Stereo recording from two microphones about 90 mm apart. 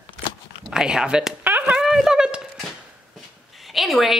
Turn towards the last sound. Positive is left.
turn(degrees=0)  # may be behind; listen again after turning